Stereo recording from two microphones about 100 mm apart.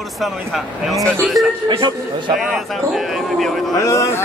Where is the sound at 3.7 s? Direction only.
30° left (ahead or behind).